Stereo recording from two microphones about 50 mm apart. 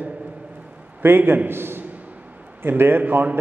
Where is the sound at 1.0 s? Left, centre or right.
Right.